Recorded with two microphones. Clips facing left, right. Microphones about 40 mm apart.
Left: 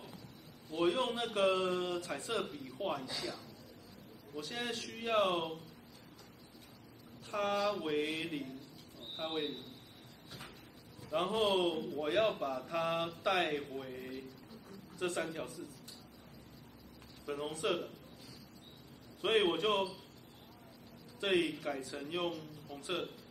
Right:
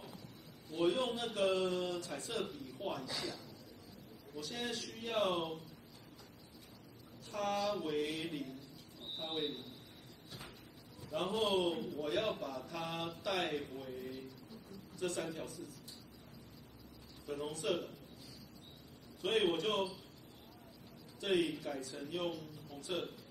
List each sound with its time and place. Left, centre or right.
0.7 s a man's voice: left
4.4 s a man's voice: left
5.2 s speech: centre
7.2 s a man's voice: left
11.1 s a man's voice: left
17.3 s a man's voice: left
19.2 s a man's voice: left
21.2 s a man's voice: left